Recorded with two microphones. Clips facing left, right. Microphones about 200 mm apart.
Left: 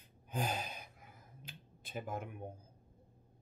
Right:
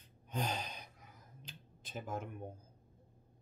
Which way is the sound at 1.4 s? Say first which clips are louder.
Left 1 dB; 55° left (ahead or behind).